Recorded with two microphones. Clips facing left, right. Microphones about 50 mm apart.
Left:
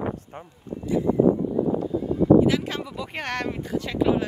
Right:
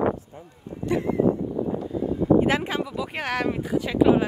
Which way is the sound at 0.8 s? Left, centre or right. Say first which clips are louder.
Even; right.